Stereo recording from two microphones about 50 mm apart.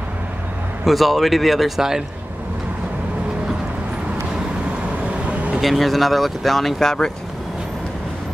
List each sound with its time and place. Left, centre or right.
0.8 s speech: centre
5.3 s a sound: right
5.6 s speech: centre